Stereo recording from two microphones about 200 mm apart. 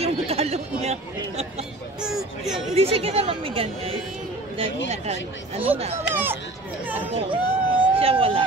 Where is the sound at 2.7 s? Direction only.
30° right (ahead or behind).